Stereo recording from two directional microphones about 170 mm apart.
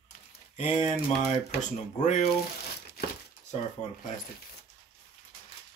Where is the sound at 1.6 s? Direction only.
45° left (ahead or behind).